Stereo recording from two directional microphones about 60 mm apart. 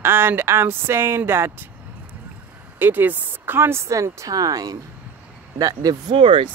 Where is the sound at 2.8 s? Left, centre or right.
Right.